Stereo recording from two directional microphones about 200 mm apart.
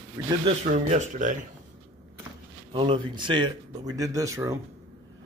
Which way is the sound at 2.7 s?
25° right (ahead or behind).